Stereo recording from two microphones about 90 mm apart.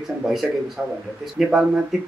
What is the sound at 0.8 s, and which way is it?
Speech, 15° right (ahead or behind).